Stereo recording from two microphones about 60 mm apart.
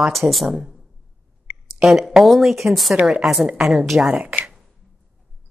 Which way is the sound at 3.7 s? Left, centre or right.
Centre.